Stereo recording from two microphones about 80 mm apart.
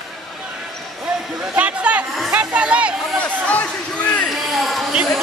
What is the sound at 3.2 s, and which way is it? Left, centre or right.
Speech, centre.